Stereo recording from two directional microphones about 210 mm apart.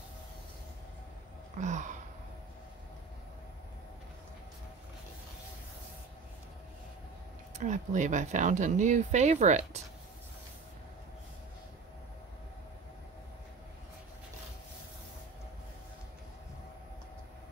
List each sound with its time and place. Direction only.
1.6 s speech: 35° right (ahead or behind)
7.5 s speech: 35° right (ahead or behind)